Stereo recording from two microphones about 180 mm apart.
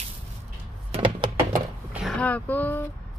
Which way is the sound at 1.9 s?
Centre (ahead or behind).